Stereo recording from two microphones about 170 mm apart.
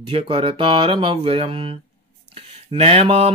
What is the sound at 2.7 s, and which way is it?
Music, 35° right (ahead or behind).